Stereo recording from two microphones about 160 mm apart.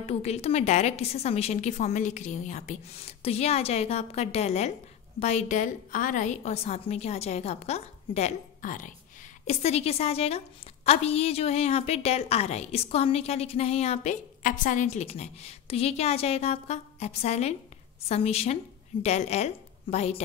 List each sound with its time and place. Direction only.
0.0 s a woman's voice: 40° left (ahead or behind)
8.6 s speech: 55° left (ahead or behind)
9.5 s a woman's voice: 40° left (ahead or behind)
15.0 s a woman's voice: 40° left (ahead or behind)